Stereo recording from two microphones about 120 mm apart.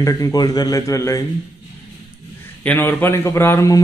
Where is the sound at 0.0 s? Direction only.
30° left (ahead or behind).